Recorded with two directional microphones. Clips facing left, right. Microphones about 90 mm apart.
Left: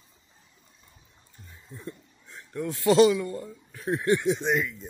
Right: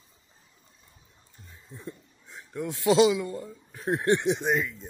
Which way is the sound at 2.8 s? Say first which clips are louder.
Left 2 dB; 5° right (ahead or behind).